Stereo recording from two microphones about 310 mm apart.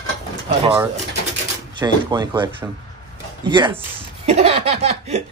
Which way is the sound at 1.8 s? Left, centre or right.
Centre.